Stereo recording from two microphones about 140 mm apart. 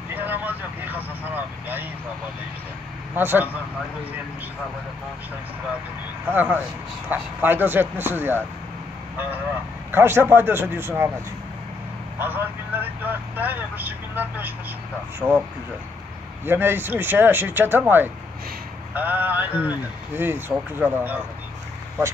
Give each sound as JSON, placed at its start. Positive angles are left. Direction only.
{"t": 0.1, "sound": "vehicle", "side_deg": -15}
{"t": 3.2, "sound": "speech", "side_deg": -15}
{"t": 6.2, "sound": "speech", "side_deg": -15}
{"t": 12.2, "sound": "speech", "side_deg": -15}
{"t": 16.4, "sound": "speech", "side_deg": -15}